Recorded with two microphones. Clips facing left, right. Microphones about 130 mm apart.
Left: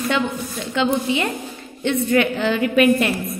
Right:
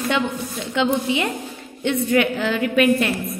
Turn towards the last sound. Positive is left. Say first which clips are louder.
# left 2 dB
turn(degrees=5)  # may be behind; listen again after turning